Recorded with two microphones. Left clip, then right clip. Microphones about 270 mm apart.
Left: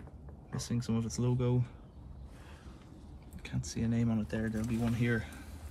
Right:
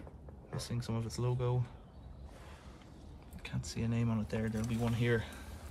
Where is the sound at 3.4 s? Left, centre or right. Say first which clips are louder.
Left 1 dB; right.